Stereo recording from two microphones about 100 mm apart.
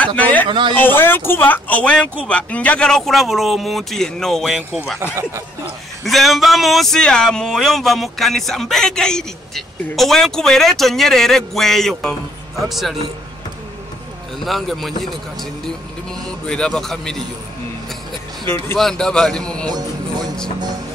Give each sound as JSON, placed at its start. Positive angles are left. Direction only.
{"t": 0.0, "sound": "a sound", "side_deg": 15}
{"t": 0.5, "sound": "a man's voice", "side_deg": -55}
{"t": 0.7, "sound": "speech", "side_deg": 20}
{"t": 6.0, "sound": "speech", "side_deg": 0}
{"t": 14.4, "sound": "speech", "side_deg": 0}
{"t": 16.3, "sound": "a man's voice", "side_deg": 10}
{"t": 18.8, "sound": "a man's voice", "side_deg": 5}